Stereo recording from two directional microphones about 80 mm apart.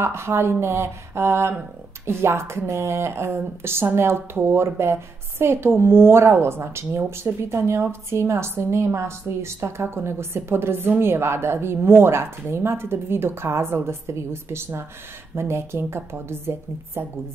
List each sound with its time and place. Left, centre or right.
0.0 s a woman's voice: right